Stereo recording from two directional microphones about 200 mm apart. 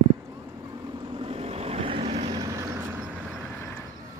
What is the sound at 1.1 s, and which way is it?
Vehicle, 30° right (ahead or behind).